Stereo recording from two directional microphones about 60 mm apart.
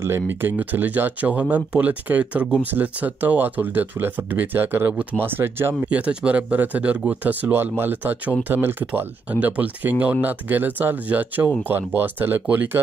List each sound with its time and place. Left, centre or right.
0.0 s speech: right
5.8 s speech: right
9.3 s speech: right